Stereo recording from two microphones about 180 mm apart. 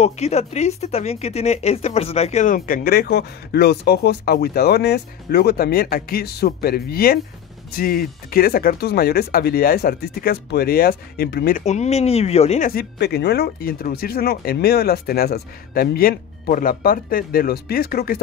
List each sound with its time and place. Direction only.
0.0 s speech: 35° left (ahead or behind); by 11.6 s 60° left (ahead or behind)
11.6 s speech: 40° left (ahead or behind)
13.0 s speech: 65° left (ahead or behind)